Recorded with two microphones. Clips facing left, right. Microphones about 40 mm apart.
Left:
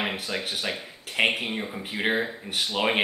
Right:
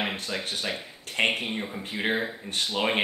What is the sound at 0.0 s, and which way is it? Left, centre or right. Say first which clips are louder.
Speech: left 1 dB; centre.